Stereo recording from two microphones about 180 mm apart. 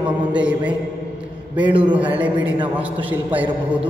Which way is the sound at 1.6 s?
25° right (ahead or behind).